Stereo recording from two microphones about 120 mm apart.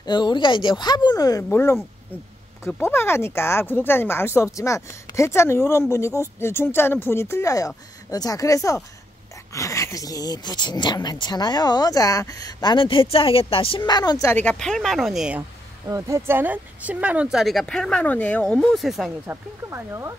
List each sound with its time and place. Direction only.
0.0 s speech: 40° left (ahead or behind)
1.5 s speech: 20° left (ahead or behind)
12.7 s a woman's voice: 45° left (ahead or behind)
13.8 s speech: 35° left (ahead or behind)
14.3 s speech: 10° left (ahead or behind); by 15.4 s 5° right (ahead or behind)
15.9 s speech: 25° right (ahead or behind); by 18.9 s 10° left (ahead or behind)
18.9 s speech: 5° right (ahead or behind)
19.2 s speech: 20° right (ahead or behind)